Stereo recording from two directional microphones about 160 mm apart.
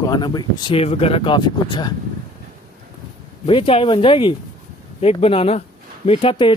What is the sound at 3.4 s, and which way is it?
Speech, 35° left (ahead or behind).